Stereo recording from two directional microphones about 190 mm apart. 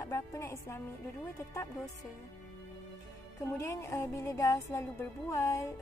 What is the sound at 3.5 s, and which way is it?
Speech, 15° left (ahead or behind).